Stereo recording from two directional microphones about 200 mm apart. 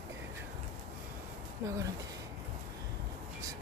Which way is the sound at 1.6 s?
15° right (ahead or behind).